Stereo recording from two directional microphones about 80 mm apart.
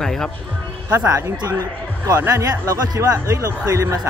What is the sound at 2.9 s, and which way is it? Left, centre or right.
Speech, right.